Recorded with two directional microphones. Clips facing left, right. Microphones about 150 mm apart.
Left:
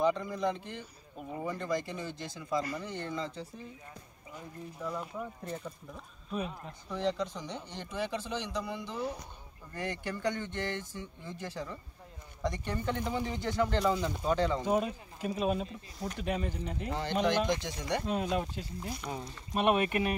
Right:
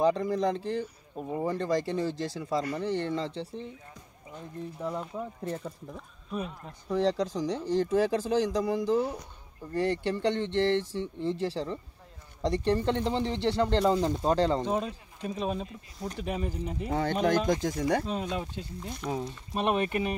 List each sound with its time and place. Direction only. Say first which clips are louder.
0.0 s speech: right 4 dB; 35° right (ahead or behind)
4.8 s speech: right 3 dB; 25° right (ahead or behind)
6.3 s speech: right 1 dB; centre (ahead or behind)
6.9 s speech: right 6 dB; 35° right (ahead or behind)
14.6 s speech: even; 5° left (ahead or behind)
16.9 s speech: right 4 dB; 50° right (ahead or behind)
17.7 s speech: right 4 dB; 15° left (ahead or behind)
19.0 s speech: right 6 dB; 20° right (ahead or behind)
19.6 s speech: even; 10° left (ahead or behind)